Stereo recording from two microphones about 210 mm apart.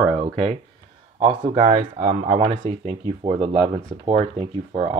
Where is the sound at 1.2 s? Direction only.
30° right (ahead or behind).